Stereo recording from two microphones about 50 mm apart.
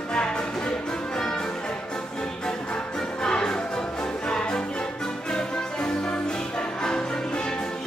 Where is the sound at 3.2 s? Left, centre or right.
Centre.